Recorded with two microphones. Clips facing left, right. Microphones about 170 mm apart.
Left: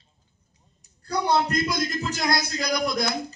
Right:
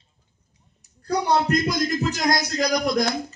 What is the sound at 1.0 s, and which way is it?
A man's voice, 40° right (ahead or behind).